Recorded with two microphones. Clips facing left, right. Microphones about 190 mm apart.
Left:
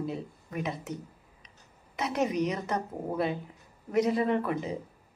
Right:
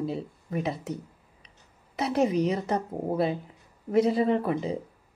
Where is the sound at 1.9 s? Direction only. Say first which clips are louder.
Right 4 dB; 35° right (ahead or behind).